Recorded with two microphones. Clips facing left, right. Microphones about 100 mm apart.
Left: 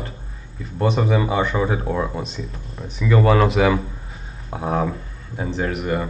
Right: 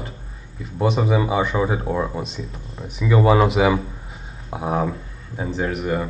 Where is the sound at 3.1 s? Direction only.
15° right (ahead or behind).